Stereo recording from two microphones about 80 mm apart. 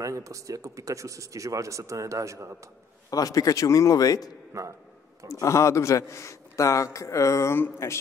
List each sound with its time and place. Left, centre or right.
0.0 s speech: right
3.1 s a man's voice: left
4.5 s a man's voice: right
5.3 s a man's voice: left